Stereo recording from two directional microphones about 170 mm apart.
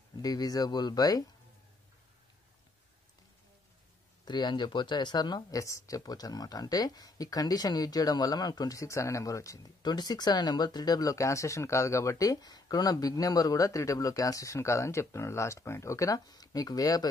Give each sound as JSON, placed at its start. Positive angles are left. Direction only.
{"t": 0.2, "sound": "speech", "side_deg": 20}
{"t": 4.2, "sound": "speech", "side_deg": 25}